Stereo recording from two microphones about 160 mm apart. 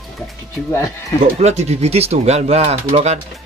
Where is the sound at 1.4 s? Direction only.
45° right (ahead or behind).